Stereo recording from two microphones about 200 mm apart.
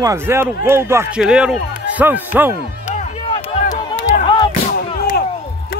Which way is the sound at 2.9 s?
35° left (ahead or behind).